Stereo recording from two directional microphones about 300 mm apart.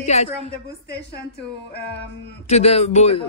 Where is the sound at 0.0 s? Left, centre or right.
Left.